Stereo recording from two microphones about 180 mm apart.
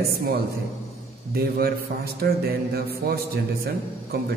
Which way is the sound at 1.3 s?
60° right (ahead or behind).